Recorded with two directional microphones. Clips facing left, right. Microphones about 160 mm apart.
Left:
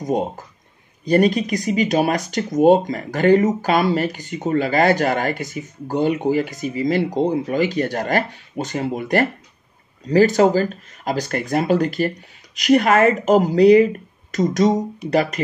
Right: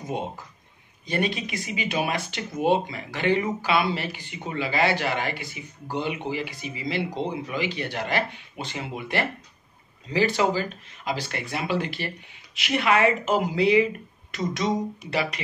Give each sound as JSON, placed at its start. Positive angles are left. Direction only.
{"t": 1.0, "sound": "speech", "side_deg": 40}